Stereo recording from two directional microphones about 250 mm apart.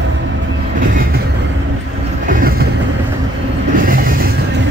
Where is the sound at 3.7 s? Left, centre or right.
Right.